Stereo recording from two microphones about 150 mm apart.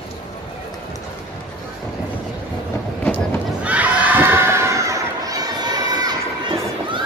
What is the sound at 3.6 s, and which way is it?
Crowd, 10° right (ahead or behind).